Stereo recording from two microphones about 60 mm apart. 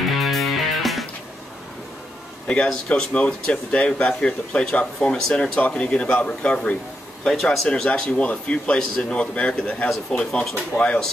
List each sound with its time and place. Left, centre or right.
0.1 s music: centre
2.4 s speech: centre